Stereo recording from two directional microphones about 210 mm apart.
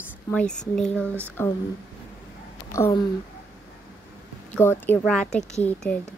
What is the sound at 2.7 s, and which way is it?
Speech, 15° left (ahead or behind).